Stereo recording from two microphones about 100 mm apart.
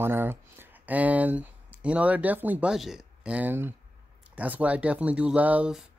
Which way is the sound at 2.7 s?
5° right (ahead or behind).